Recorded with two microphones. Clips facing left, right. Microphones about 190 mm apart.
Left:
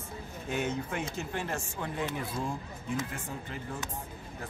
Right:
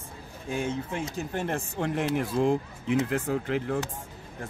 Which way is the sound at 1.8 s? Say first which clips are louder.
Right 9 dB; 80° right.